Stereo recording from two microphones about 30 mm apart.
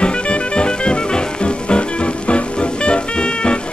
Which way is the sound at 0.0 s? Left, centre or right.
Left.